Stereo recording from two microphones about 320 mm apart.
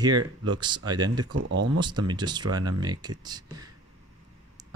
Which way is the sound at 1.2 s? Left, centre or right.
Right.